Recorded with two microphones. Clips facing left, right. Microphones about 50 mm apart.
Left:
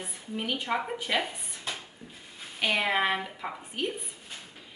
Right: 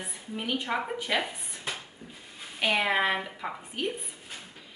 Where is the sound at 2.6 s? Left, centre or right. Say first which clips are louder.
Right 1 dB; centre.